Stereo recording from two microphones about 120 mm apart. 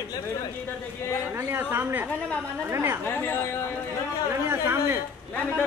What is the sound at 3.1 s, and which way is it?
Speech, 20° left (ahead or behind).